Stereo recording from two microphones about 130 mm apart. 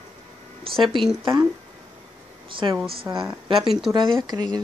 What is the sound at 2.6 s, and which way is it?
Speech, 35° right (ahead or behind).